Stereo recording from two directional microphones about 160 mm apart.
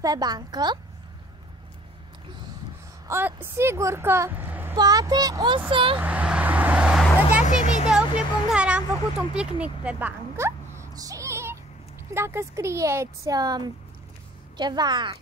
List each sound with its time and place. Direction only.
0.0 s speech: 25° right (ahead or behind)
3.1 s a woman's voice: 10° right (ahead or behind)
4.7 s speech: 25° right (ahead or behind)
5.9 s vehicle: 10° right (ahead or behind)
7.8 s a sound: 5° right (ahead or behind)
9.3 s speech: 5° right (ahead or behind); by 15.1 s 30° right (ahead or behind)